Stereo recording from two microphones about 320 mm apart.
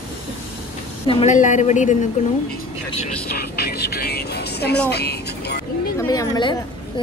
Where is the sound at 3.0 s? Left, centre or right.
Left.